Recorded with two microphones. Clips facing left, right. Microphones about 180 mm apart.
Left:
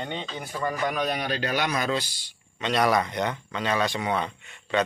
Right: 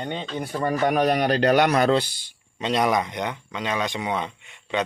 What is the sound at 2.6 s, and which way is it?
Speech, 25° right (ahead or behind).